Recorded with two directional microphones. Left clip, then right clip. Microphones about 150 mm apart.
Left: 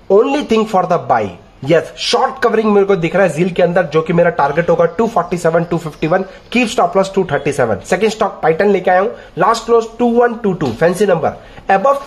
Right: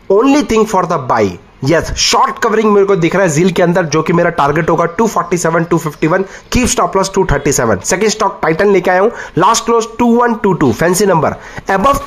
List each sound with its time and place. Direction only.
0.2 s speech: 35° right (ahead or behind)
0.6 s speech: 10° right (ahead or behind)
2.4 s speech: 15° right (ahead or behind); by 4.9 s 45° right (ahead or behind)
4.9 s speech: 20° right (ahead or behind)
5.3 s speech: 10° right (ahead or behind)
6.5 s speech: 20° right (ahead or behind)
8.5 s speech: 40° right (ahead or behind)